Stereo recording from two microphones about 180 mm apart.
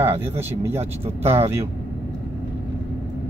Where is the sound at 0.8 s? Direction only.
35° right (ahead or behind).